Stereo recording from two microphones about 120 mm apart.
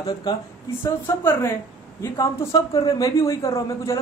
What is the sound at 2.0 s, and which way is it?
Speech, 25° left (ahead or behind).